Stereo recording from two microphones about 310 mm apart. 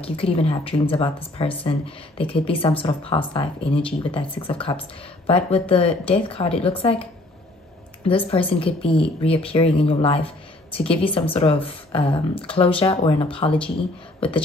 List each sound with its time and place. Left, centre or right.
0.0 s speech: centre